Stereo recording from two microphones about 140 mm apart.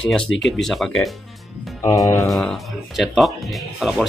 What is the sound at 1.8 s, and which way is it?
Music, 25° left (ahead or behind).